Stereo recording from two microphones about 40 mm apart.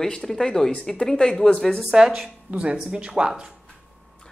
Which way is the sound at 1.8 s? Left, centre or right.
Centre.